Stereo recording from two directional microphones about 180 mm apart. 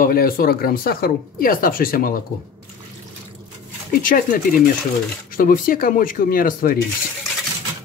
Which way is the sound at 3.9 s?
50° left (ahead or behind).